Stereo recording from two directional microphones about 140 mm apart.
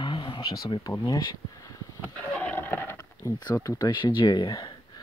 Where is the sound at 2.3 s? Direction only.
10° left (ahead or behind).